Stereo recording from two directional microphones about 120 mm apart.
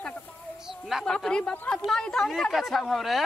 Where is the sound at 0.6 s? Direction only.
Centre (ahead or behind).